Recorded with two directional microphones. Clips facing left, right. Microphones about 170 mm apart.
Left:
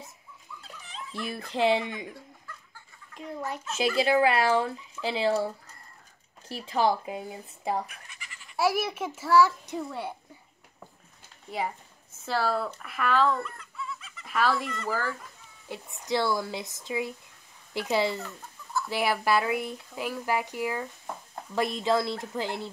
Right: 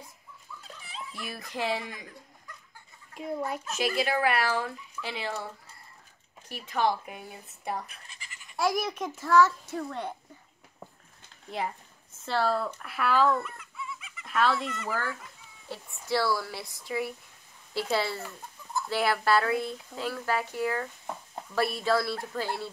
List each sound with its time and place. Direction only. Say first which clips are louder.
0.6 s dog: even; 5° right (ahead or behind)
1.2 s speech: left 7 dB; 25° left (ahead or behind)
3.2 s a child's voice: right 3 dB; 10° right (ahead or behind)
3.6 s speech: left 6 dB; 30° left (ahead or behind)
6.5 s speech: left 2 dB; 30° left (ahead or behind)
7.9 s goat: left 2 dB; 30° right (ahead or behind)
8.5 s speech: left 2 dB; 5° left (ahead or behind)
12.3 s speech: even; 5° left (ahead or behind)
12.8 s chicken: even; 5° right (ahead or behind)
14.2 s speech: even; 5° left (ahead or behind)
14.7 s a child's voice: left 2 dB; 10° right (ahead or behind)
15.7 s speech: left 1 dB; 20° left (ahead or behind)
18.2 s chicken: even; 20° right (ahead or behind)
18.9 s speech: right 1 dB; 15° left (ahead or behind)